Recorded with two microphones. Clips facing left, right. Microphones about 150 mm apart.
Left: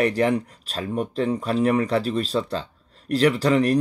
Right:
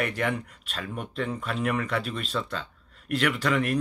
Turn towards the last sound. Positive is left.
turn(degrees=35)  # may be behind; listen again after turning